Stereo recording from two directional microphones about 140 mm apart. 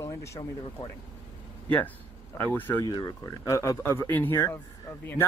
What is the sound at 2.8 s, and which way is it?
Speech, 25° left (ahead or behind).